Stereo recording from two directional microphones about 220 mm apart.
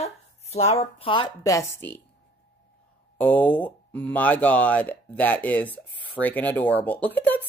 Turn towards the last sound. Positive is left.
turn(degrees=5)  # may be behind; listen again after turning